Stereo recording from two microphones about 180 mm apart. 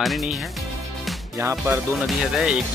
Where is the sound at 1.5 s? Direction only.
5° right (ahead or behind).